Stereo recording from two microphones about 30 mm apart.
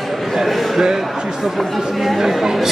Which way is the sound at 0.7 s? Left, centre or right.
Centre.